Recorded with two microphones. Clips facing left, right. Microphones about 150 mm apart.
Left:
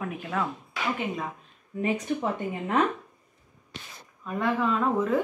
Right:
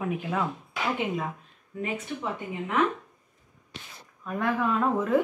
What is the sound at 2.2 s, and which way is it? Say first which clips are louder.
Speech: left 3 dB; 40° left (ahead or behind).